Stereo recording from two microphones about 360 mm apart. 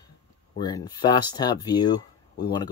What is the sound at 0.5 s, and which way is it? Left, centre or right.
Speech, centre.